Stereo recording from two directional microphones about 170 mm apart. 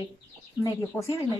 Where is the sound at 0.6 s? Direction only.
20° left (ahead or behind).